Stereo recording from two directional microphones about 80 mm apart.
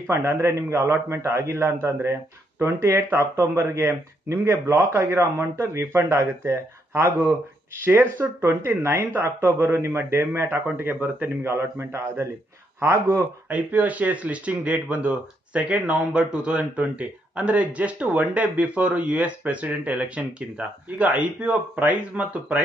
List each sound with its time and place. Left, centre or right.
0.1 s speech: right
13.5 s speech: centre